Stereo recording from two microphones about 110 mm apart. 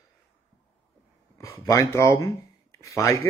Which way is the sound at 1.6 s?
30° left (ahead or behind).